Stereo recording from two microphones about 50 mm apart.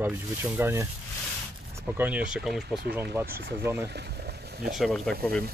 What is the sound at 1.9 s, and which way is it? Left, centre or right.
Speech, right.